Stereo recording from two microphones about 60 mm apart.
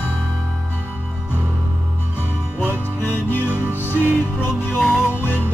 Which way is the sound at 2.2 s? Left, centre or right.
Left.